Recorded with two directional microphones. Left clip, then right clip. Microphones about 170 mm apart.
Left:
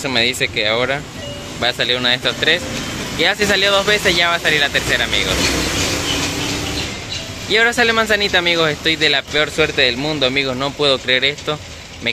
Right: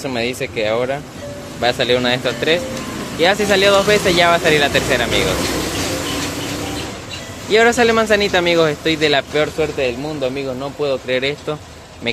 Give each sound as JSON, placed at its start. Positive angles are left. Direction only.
{"t": 0.0, "sound": "speech", "side_deg": -10}
{"t": 7.4, "sound": "speech", "side_deg": -10}
{"t": 9.4, "sound": "a man's voice", "side_deg": 5}
{"t": 11.1, "sound": "speech", "side_deg": -10}